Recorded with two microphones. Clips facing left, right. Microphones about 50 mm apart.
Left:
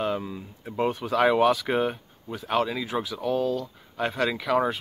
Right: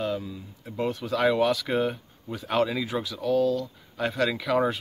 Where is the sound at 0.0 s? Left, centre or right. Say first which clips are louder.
Left 2 dB; left.